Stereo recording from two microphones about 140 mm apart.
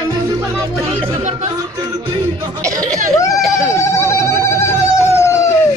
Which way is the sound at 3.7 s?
20° left (ahead or behind).